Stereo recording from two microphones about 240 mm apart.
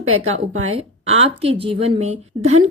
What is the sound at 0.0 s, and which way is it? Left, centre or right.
Speech, right.